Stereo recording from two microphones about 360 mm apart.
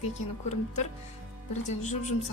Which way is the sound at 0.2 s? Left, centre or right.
Left.